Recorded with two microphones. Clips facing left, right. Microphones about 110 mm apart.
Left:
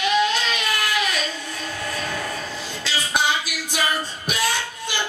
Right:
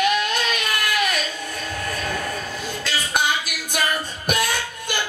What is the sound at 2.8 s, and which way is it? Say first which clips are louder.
Music: even; 50° right (ahead or behind).